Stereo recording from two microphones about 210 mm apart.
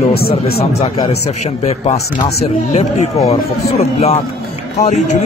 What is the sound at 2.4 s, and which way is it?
Speech, 30° left (ahead or behind).